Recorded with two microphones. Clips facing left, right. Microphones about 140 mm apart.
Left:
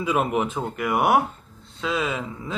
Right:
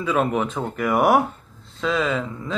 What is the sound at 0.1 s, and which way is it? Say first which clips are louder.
Speech: right 2 dB; 10° left (ahead or behind).